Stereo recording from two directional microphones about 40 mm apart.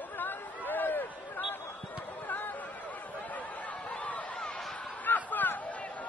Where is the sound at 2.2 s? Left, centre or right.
Left.